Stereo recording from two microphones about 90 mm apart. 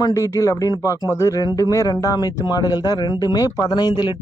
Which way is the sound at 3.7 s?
55° left (ahead or behind).